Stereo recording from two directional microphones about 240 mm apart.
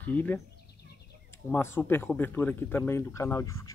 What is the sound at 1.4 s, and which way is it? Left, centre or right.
Speech, centre.